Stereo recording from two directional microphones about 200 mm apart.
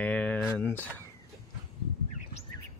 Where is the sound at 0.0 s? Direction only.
5° left (ahead or behind).